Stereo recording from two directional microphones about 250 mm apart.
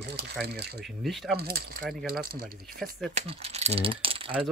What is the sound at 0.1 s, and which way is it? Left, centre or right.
Speech, right.